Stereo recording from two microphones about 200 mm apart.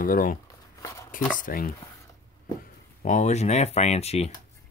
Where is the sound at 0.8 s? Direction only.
15° left (ahead or behind).